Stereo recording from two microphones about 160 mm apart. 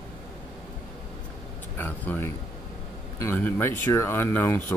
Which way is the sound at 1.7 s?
10° left (ahead or behind).